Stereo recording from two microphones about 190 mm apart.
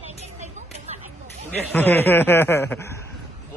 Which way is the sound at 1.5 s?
10° left (ahead or behind).